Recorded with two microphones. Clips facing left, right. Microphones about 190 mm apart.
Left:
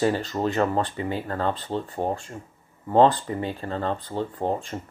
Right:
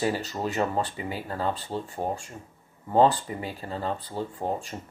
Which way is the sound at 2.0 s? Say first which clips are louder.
Left 3 dB; 25° left (ahead or behind).